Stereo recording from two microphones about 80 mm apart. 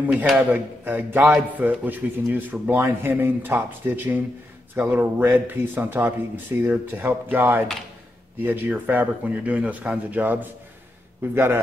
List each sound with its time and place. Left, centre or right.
0.0 s a man's voice: centre